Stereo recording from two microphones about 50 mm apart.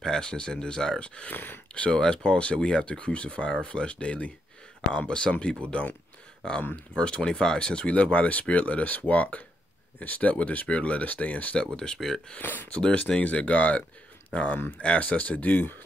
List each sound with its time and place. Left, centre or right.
0.0 s speech: centre
1.3 s speech: left
1.8 s speech: centre
6.4 s speech: centre; by 11.6 s left
11.6 s speech: centre
12.4 s speech: left
12.8 s speech: centre